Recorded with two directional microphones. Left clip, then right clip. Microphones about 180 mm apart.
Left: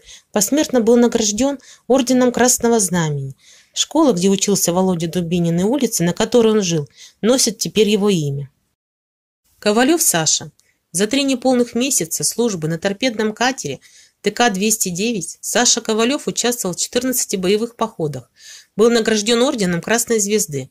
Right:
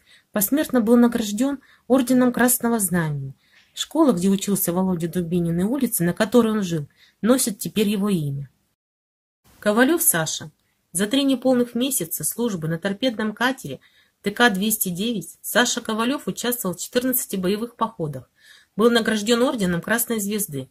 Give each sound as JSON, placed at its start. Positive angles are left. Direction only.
{"t": 0.0, "sound": "speech", "side_deg": 25}
{"t": 9.6, "sound": "speech", "side_deg": 30}